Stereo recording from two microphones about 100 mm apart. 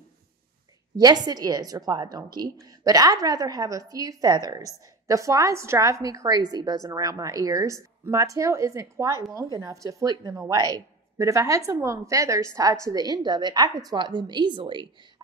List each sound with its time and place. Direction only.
0.9 s a woman's voice: 40° right (ahead or behind)